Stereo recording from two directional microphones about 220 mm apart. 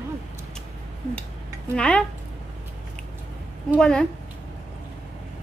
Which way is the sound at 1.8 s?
5° left (ahead or behind).